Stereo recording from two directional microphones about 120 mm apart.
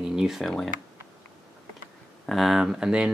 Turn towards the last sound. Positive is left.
turn(degrees=-5)  # may be behind; listen again after turning